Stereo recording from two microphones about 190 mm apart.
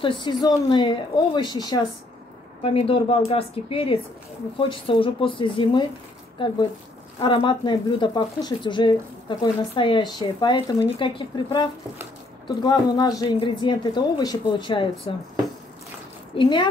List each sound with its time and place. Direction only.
0.0 s a woman's voice: 25° left (ahead or behind)
7.2 s a woman's voice: 25° left (ahead or behind)
16.3 s a woman's voice: 25° left (ahead or behind)